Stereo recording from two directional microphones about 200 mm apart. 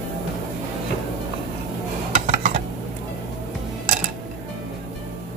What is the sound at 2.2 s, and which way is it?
Dishes, 35° right (ahead or behind).